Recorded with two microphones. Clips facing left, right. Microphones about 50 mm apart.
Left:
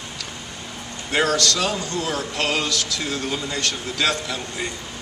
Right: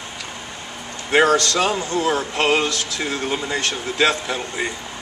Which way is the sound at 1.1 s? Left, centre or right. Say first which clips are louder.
Right 5 dB; right.